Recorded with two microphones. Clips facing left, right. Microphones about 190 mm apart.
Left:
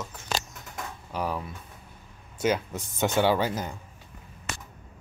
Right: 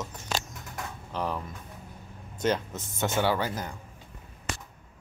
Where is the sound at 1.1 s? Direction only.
10° left (ahead or behind).